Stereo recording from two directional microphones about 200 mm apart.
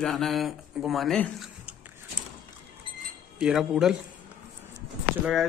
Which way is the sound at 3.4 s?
5° right (ahead or behind).